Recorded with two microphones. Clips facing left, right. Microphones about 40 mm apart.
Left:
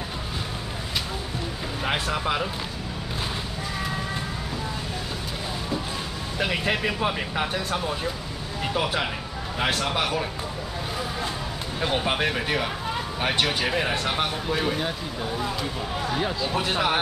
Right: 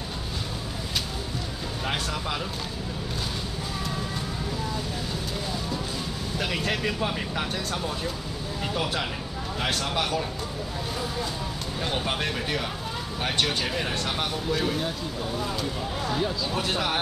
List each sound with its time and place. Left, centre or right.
1.9 s speech: left
6.3 s speech: centre
11.8 s speech: centre
16.1 s speech: left